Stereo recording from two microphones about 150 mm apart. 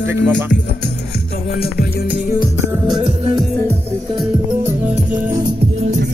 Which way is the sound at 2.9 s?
35° right (ahead or behind).